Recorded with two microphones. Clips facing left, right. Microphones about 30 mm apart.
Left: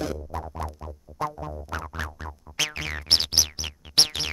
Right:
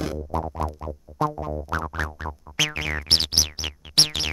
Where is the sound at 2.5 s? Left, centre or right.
Centre.